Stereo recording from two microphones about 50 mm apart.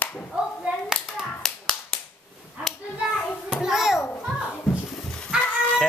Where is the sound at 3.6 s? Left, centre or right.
Centre.